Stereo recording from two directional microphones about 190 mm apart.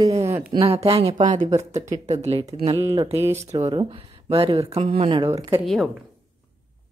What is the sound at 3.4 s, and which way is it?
Speech, 30° right (ahead or behind).